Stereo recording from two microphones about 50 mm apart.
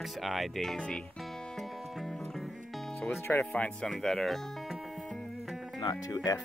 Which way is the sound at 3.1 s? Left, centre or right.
Left.